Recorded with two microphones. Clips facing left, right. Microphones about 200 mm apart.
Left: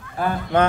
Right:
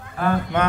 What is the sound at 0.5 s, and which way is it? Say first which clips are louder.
Speech: left 6 dB; 35° left (ahead or behind).